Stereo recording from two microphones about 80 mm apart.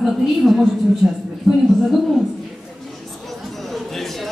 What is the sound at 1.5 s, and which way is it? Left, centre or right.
Speech, centre.